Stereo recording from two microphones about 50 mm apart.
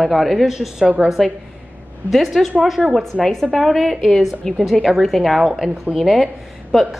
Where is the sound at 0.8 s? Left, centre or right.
Right.